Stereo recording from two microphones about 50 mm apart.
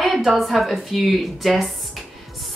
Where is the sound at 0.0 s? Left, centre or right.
Centre.